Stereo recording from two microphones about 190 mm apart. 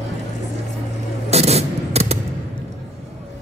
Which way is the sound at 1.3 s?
35° right (ahead or behind).